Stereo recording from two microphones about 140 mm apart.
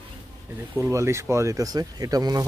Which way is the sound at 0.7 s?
20° right (ahead or behind).